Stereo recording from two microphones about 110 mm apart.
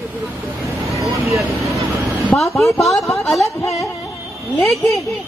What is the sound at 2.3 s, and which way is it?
A woman's voice, centre (ahead or behind).